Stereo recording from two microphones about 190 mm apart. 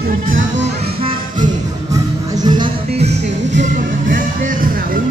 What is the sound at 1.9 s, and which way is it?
Music, 20° right (ahead or behind).